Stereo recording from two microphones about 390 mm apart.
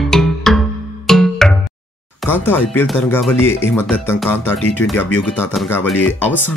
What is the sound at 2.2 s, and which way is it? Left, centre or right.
Speech, centre.